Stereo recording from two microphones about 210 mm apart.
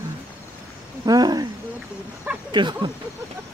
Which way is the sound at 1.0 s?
20° right (ahead or behind).